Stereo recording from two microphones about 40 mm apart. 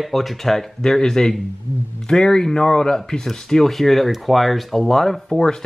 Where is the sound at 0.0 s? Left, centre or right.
Centre.